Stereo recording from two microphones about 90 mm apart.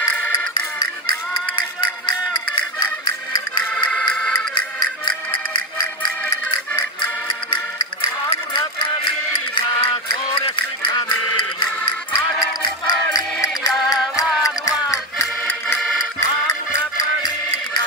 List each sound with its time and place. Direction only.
3.7 s music: 15° left (ahead or behind)
4.6 s music: 55° left (ahead or behind)
8.3 s a sound: 70° left (ahead or behind)
11.8 s music: 65° left (ahead or behind)
12.8 s music: 45° left (ahead or behind)